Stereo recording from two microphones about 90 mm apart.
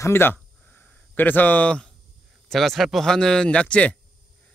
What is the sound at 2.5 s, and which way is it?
Speech, centre (ahead or behind).